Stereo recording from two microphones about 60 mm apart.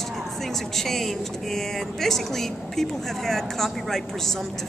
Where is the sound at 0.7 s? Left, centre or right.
Centre.